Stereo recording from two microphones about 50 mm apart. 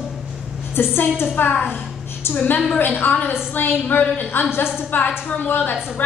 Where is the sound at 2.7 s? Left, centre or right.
Left.